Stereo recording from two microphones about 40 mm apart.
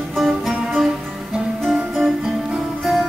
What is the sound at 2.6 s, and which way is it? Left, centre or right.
Music, centre.